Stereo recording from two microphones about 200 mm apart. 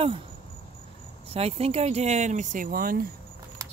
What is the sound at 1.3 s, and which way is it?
Speech, 30° right (ahead or behind).